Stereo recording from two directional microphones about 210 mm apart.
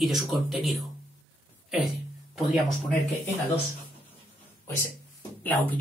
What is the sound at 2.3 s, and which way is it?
Speech, centre (ahead or behind).